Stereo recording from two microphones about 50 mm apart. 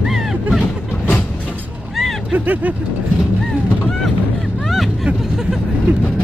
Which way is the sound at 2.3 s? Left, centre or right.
Right.